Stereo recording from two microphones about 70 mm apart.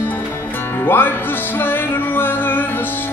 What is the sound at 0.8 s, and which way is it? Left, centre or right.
Music, left.